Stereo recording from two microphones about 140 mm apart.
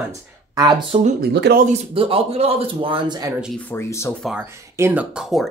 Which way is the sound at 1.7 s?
40° right (ahead or behind).